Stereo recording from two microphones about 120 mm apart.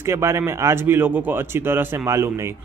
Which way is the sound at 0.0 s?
25° right (ahead or behind).